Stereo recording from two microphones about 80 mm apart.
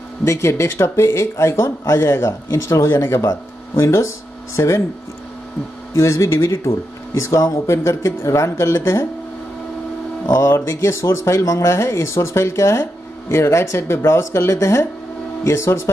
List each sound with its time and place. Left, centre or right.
0.2 s speech: left
5.9 s speech: left
10.2 s music: left
10.5 s speech: left